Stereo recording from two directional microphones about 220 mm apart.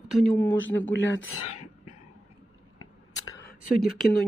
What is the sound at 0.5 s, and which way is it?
Speech, 60° left (ahead or behind).